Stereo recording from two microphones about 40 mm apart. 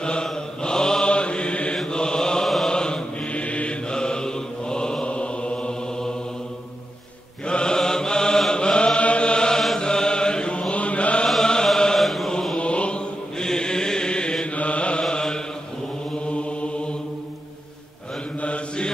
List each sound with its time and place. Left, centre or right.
0.0 s mantra: left
2.4 s chant: centre
2.7 s mantra: centre
3.3 s mantra: left
3.9 s mantra: centre
7.4 s mantra: left
11.4 s chant: centre
12.5 s chant: left
13.4 s chant: centre
14.4 s mantra: left
15.0 s mantra: centre
16.3 s mantra: left
18.4 s mantra: left